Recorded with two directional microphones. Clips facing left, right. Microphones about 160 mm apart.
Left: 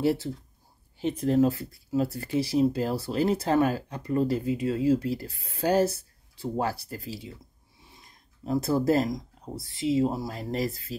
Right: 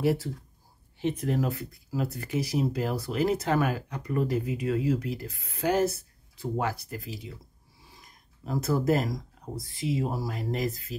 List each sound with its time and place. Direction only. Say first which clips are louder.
1.2 s speech: left 6 dB; 30° left (ahead or behind)
8.5 s speech: left 2 dB; 30° left (ahead or behind)